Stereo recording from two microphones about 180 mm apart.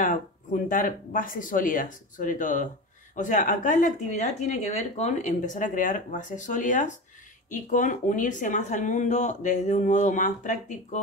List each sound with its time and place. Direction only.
0.0 s speech: 45° left (ahead or behind)